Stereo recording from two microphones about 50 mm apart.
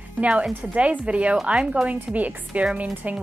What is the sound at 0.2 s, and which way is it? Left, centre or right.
A woman's voice, right.